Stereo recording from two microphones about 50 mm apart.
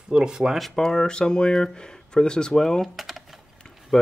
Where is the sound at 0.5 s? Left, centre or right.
Centre.